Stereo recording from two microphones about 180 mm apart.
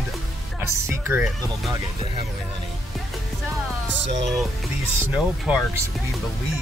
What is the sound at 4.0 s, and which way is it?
Music, 80° right.